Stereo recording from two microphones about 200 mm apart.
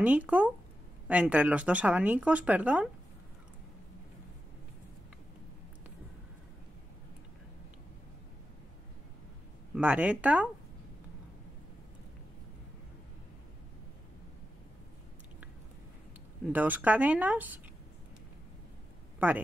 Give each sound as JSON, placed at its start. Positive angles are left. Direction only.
{"t": 0.0, "sound": "speech", "side_deg": -5}
{"t": 9.8, "sound": "speech", "side_deg": -5}
{"t": 16.4, "sound": "speech", "side_deg": -10}
{"t": 19.1, "sound": "a sound", "side_deg": -10}